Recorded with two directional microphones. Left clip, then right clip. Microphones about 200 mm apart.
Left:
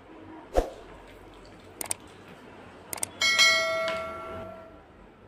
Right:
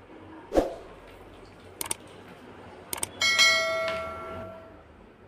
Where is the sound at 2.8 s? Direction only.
Centre (ahead or behind).